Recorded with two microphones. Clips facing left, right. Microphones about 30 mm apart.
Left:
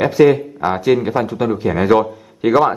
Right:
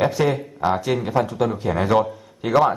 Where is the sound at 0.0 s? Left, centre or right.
Centre.